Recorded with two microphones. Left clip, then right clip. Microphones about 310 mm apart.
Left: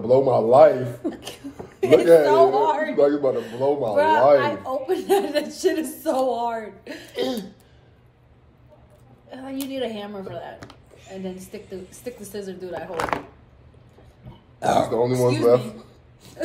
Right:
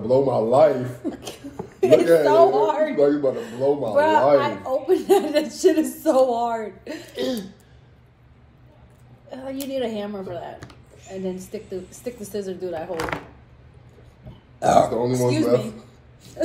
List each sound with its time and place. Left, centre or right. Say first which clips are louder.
0.0 s a man's voice: left 2 dB; centre
1.1 s a sound: right 1 dB; centre
2.2 s a woman's voice: right 1 dB; centre
3.0 s a man's voice: left 1 dB; centre
3.3 s a woman's voice: even; centre
9.3 s a woman's voice: right 3 dB; centre
13.1 s a man's voice: left 4 dB; centre
14.6 s speech: right 4 dB; centre
15.0 s a man's voice: left 2 dB; centre
15.2 s a woman's voice: left 3 dB; centre